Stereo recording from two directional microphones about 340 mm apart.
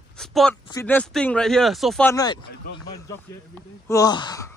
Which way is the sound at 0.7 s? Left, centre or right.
Centre.